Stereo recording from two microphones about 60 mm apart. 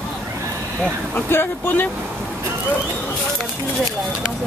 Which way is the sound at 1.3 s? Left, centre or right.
Left.